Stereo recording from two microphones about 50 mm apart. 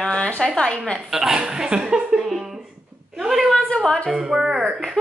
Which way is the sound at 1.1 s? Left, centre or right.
Centre.